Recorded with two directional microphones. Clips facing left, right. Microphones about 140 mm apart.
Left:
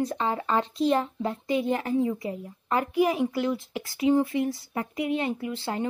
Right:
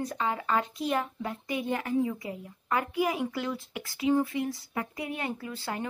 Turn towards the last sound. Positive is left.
turn(degrees=25)  # may be behind; listen again after turning